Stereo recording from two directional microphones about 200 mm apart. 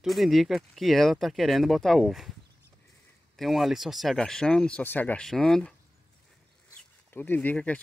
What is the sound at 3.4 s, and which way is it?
Speech, centre (ahead or behind).